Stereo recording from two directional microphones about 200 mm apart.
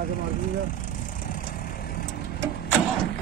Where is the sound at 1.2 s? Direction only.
45° left (ahead or behind).